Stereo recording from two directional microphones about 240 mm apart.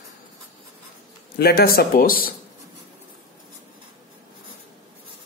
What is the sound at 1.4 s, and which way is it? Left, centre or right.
Speech, left.